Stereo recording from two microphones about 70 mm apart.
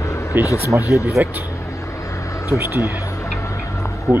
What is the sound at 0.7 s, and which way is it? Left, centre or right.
Speech, centre.